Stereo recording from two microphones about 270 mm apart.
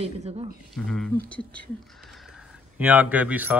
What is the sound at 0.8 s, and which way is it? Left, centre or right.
A man's voice, centre.